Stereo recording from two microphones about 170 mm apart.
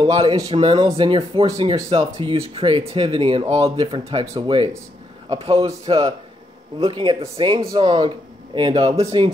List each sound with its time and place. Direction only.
0.2 s speech: 30° right (ahead or behind)
5.7 s speech: 20° right (ahead or behind)